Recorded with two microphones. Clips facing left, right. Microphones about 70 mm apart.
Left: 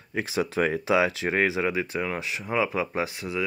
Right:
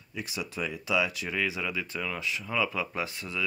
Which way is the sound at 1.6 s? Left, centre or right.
Left.